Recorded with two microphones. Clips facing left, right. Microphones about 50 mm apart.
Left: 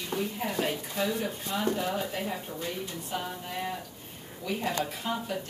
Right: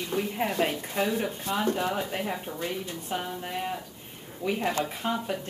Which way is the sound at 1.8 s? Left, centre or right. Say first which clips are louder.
Right 2 dB; right.